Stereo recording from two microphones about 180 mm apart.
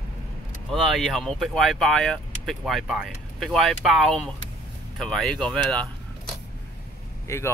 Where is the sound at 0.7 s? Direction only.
Centre (ahead or behind).